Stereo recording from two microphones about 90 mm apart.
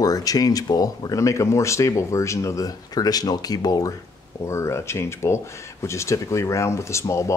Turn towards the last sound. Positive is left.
turn(degrees=35)  # may be behind; listen again after turning